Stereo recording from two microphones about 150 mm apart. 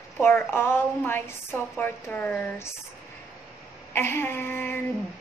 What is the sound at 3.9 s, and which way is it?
Speech, 15° left (ahead or behind).